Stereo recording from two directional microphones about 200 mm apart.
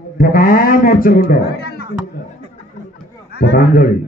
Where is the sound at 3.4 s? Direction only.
45° left (ahead or behind).